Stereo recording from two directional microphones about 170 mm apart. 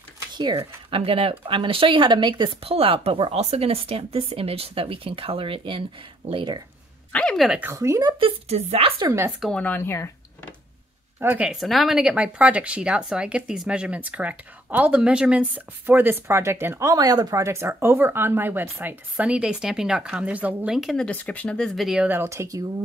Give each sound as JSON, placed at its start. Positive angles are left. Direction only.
{"t": 0.6, "sound": "speech", "side_deg": -35}
{"t": 7.1, "sound": "speech", "side_deg": 5}
{"t": 7.7, "sound": "speech", "side_deg": -20}
{"t": 8.2, "sound": "speech", "side_deg": -35}
{"t": 9.4, "sound": "speech", "side_deg": 5}
{"t": 11.1, "sound": "speech", "side_deg": -10}